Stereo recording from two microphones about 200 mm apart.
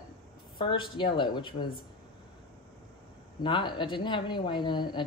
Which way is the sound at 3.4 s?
25° left (ahead or behind).